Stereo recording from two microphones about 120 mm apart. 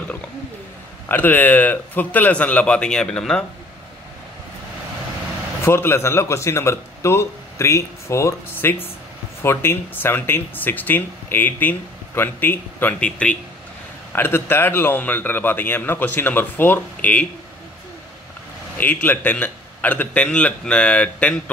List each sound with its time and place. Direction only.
1.0 s a man's voice: 15° left (ahead or behind)
5.7 s a man's voice: 20° left (ahead or behind)
18.8 s a man's voice: 15° left (ahead or behind)